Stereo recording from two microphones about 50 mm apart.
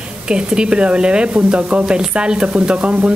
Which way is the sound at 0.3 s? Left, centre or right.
Centre.